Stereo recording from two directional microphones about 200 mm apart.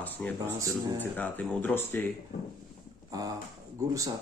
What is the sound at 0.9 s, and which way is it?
Speech, 10° left (ahead or behind).